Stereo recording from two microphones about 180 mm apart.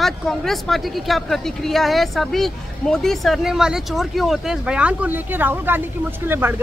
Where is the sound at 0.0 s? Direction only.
Centre (ahead or behind).